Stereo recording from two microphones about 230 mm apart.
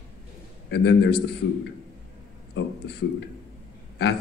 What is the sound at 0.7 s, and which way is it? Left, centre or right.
Speech, left.